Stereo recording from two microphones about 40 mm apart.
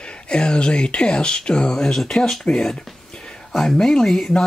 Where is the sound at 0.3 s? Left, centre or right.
Left.